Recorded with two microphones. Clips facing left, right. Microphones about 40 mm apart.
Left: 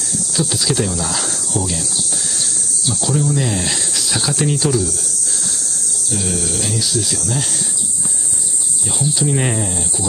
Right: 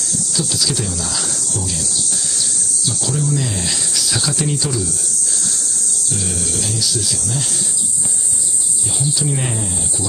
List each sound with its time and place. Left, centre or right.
0.3 s cricket: centre
2.9 s speech: centre
6.0 s speech: centre
8.8 s speech: centre